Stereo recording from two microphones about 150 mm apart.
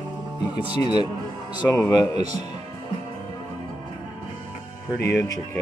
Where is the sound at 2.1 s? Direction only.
45° right (ahead or behind).